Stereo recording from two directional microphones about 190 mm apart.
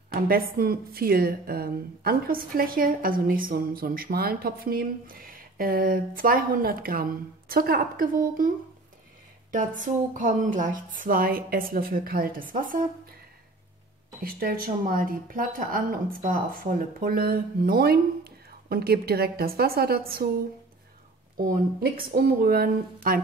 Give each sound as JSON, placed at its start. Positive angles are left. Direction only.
{"t": 0.1, "sound": "a woman's voice", "side_deg": -50}
{"t": 14.2, "sound": "a woman's voice", "side_deg": -50}
{"t": 21.4, "sound": "a woman's voice", "side_deg": -50}